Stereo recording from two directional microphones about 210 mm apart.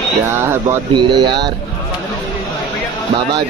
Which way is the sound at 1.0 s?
20° right (ahead or behind).